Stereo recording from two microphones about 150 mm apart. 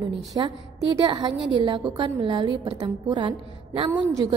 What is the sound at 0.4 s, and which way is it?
A woman's voice, 30° right (ahead or behind).